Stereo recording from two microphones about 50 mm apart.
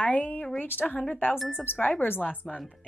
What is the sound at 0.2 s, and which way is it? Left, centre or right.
A woman's voice, left.